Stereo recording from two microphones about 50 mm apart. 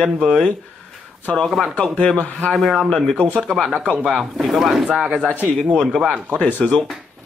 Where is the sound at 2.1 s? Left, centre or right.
Left.